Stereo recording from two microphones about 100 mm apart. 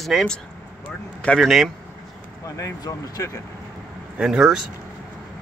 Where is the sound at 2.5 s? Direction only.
35° left (ahead or behind).